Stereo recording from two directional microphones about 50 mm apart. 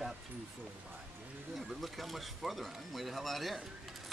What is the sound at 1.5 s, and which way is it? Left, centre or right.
Speech, centre.